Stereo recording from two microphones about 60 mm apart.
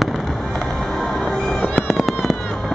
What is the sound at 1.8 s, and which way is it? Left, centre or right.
Fireworks, centre.